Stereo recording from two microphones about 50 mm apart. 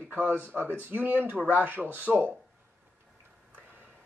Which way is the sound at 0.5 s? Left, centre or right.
Left.